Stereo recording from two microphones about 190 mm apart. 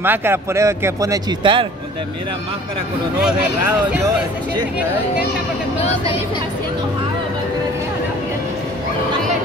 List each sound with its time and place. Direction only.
0.0 s a man's voice: 10° right (ahead or behind)
5.8 s speech: 30° left (ahead or behind)